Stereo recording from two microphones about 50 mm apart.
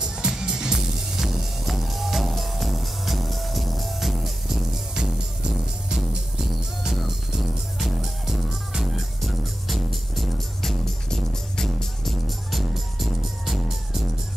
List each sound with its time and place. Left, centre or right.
0.0 s music: centre
6.8 s music: centre